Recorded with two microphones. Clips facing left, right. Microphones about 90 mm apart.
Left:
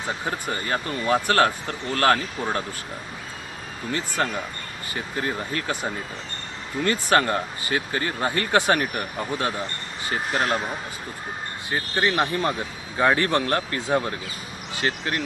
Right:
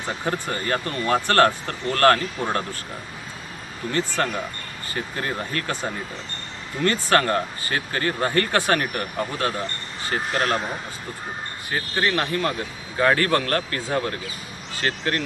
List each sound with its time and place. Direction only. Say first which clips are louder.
0.7 s speech: right 1 dB; 10° left (ahead or behind)
4.2 s speech: right 1 dB; 15° left (ahead or behind)
11.7 s speech: even; 15° left (ahead or behind)